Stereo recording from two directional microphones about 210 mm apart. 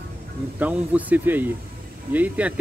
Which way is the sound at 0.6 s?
5° right (ahead or behind).